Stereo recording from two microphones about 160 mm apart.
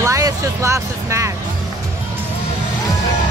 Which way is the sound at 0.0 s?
20° right (ahead or behind).